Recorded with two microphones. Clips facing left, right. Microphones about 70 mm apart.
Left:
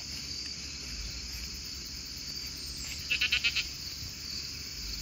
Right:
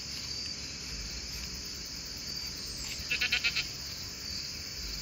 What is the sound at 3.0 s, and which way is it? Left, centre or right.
Goat, right.